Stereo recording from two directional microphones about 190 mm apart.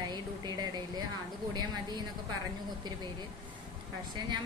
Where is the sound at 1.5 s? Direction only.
20° right (ahead or behind).